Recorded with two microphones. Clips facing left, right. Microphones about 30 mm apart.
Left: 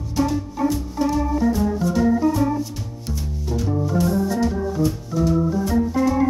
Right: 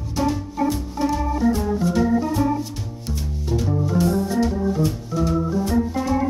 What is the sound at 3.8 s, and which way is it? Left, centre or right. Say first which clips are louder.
Organ: even; centre.